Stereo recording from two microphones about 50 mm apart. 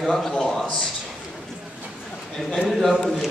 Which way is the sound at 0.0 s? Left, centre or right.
Centre.